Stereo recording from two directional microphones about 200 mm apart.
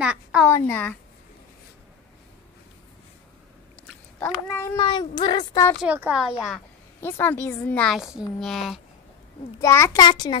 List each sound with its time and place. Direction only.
0.0 s a woman's voice: 5° right (ahead or behind)
0.5 s speech: 10° left (ahead or behind)
3.8 s a sound: 10° left (ahead or behind)
4.7 s speech: 25° left (ahead or behind)
5.9 s a woman's voice: 5° right (ahead or behind)
7.0 s a woman's voice: 10° left (ahead or behind)
9.6 s speech: 15° left (ahead or behind)